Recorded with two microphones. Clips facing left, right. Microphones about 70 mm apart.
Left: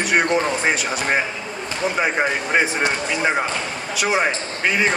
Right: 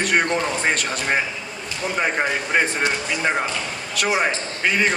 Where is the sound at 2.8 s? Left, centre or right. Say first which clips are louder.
Left 2 dB; centre.